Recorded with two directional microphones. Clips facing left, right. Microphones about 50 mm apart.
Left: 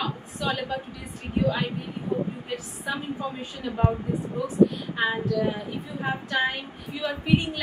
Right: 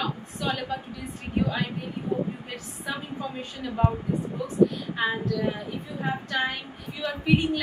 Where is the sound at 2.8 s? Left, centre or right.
Centre.